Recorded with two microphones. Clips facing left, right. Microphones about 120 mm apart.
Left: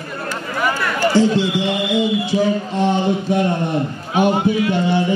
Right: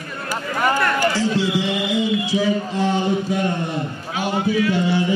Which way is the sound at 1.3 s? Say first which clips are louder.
Left 2 dB; 60° left (ahead or behind).